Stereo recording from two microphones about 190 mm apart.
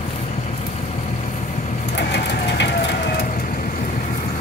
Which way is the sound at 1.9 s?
65° left (ahead or behind).